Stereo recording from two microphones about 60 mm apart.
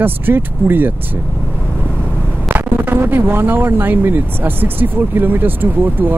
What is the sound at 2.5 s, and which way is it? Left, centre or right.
Speech, right.